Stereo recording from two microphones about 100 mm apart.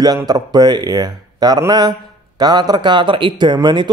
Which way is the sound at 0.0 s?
40° right (ahead or behind).